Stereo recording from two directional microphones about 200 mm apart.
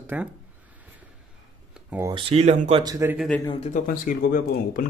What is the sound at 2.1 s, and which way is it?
Speech, 30° right (ahead or behind).